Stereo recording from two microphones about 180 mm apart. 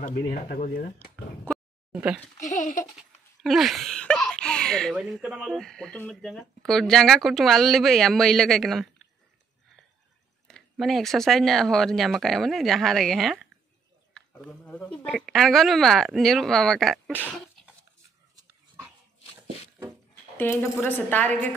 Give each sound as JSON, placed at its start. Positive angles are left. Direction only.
{"t": 0.3, "sound": "speech", "side_deg": 50}
{"t": 1.9, "sound": "speech", "side_deg": -10}
{"t": 2.3, "sound": "speech", "side_deg": 45}
{"t": 3.0, "sound": "speech", "side_deg": 0}
{"t": 10.5, "sound": "speech", "side_deg": 0}
{"t": 20.8, "sound": "a woman's voice", "side_deg": 10}